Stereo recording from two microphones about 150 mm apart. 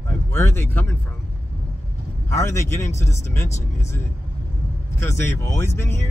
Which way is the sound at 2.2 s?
20° left (ahead or behind).